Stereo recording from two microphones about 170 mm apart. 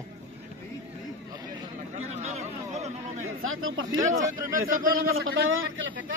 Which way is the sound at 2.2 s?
40° right (ahead or behind).